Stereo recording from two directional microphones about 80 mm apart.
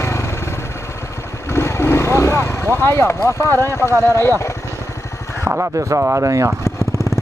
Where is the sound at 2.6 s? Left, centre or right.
Left.